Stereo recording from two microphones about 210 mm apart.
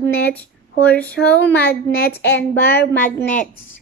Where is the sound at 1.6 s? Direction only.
50° left (ahead or behind).